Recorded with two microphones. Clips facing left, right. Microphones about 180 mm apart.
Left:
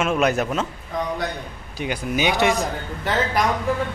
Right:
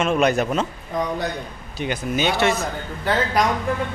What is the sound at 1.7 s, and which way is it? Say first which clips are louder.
Speech: right 1 dB; 10° left (ahead or behind).